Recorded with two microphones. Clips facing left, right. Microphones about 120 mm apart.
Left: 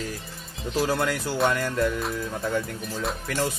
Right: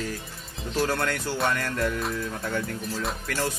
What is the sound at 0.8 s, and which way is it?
Speech, 10° left (ahead or behind).